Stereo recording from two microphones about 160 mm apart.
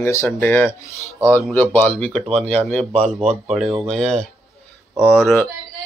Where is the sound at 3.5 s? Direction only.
Centre (ahead or behind).